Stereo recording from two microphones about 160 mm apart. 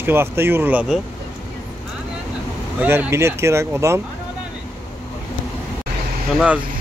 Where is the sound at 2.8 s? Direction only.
15° right (ahead or behind).